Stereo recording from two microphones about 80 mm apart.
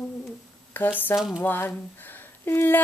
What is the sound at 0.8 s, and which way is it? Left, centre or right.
Speech, left.